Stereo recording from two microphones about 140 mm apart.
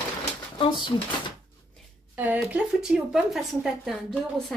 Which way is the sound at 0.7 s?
35° left (ahead or behind).